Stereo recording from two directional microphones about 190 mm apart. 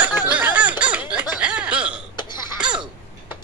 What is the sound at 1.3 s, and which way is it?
Chuckle, 5° right (ahead or behind).